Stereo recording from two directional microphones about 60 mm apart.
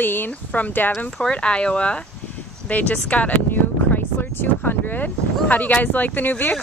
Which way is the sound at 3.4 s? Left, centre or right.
Left.